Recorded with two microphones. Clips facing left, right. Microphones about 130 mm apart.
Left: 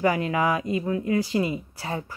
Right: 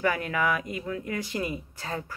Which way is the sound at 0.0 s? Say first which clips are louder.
Left 4 dB; 30° left (ahead or behind).